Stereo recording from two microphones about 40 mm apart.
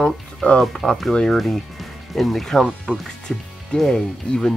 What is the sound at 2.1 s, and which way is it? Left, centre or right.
Speech, centre.